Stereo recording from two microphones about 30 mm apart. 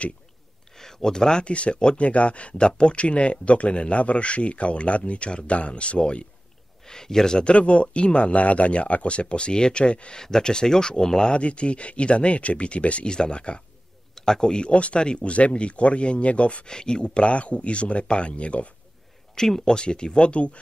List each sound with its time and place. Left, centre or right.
0.7 s a sound: centre
1.4 s speech: left
6.9 s speech: centre
7.4 s speech: left
10.1 s speech: centre
11.3 s speech: left
13.0 s speech: left
14.1 s a man's voice: centre
14.7 s speech: left
16.6 s speech: left
19.3 s speech: centre
19.7 s speech: left